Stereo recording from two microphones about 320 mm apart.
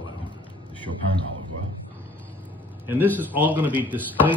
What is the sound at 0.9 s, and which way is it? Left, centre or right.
Speech, right.